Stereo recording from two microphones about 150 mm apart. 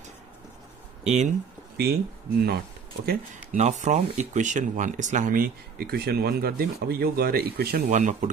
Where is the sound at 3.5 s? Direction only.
50° right (ahead or behind); by 7.8 s 90° right.